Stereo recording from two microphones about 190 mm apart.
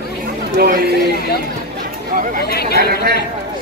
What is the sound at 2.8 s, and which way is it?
Speech, 55° right (ahead or behind).